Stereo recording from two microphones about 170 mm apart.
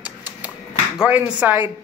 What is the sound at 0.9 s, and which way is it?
Speech, 5° right (ahead or behind).